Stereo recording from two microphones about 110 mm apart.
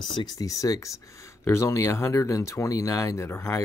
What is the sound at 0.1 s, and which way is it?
Speech, 40° left (ahead or behind).